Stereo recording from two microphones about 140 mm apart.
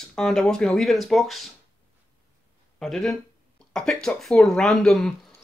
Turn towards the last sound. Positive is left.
turn(degrees=5)  # may be behind; listen again after turning